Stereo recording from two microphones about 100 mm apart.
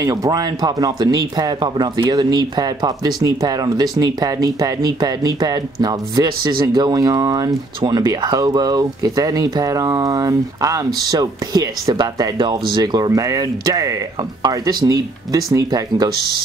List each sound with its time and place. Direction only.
0.0 s speech: 40° right (ahead or behind)